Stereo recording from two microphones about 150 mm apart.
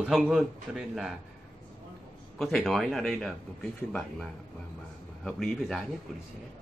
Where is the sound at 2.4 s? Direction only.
Centre (ahead or behind).